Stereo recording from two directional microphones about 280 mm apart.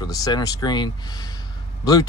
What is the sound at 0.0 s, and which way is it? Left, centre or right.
Speech, centre.